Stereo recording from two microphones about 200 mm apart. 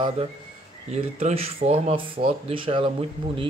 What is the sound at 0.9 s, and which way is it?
Speech, 30° right (ahead or behind).